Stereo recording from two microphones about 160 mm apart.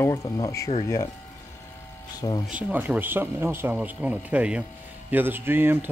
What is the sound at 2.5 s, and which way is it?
Speech, 5° right (ahead or behind).